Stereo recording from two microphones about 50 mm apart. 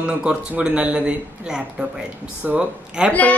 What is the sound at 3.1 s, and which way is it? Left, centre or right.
Speech, left.